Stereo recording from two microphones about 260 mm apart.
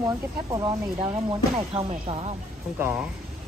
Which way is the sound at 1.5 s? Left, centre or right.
Right.